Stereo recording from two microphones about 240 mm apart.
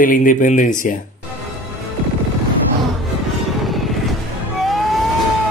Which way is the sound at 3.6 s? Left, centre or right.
Centre.